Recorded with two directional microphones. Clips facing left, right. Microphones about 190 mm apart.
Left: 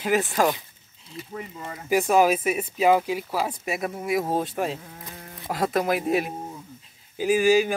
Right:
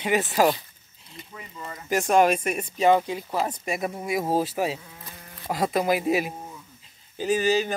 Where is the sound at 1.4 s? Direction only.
45° left (ahead or behind).